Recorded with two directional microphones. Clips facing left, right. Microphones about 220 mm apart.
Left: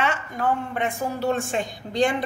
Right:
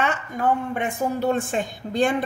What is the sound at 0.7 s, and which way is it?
Speech, 50° right (ahead or behind).